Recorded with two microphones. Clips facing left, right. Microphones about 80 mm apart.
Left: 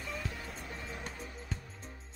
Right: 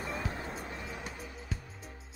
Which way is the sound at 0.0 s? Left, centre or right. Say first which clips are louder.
Right 4 dB; right.